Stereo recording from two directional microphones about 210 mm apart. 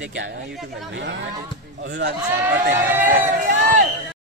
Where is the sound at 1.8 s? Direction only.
55° right (ahead or behind).